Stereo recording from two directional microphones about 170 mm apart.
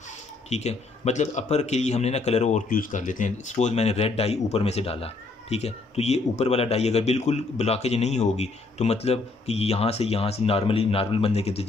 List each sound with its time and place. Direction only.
0.5 s speech: 40° left (ahead or behind)